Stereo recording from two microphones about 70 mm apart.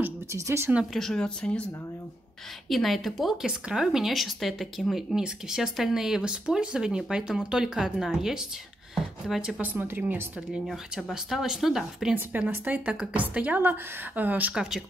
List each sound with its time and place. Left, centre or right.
0.3 s speech: right
0.9 s speech: centre
2.7 s speech: centre
9.6 s a woman's voice: right
10.7 s speech: centre
12.3 s a woman's voice: right
14.5 s speech: centre